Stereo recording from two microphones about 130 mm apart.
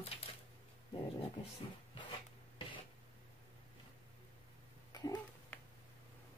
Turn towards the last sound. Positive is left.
turn(degrees=30)  # may be behind; listen again after turning